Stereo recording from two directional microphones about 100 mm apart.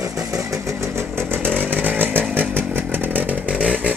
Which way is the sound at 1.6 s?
15° right (ahead or behind).